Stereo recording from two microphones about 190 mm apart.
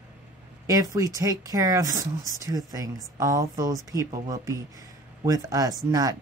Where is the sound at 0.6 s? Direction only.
20° right (ahead or behind).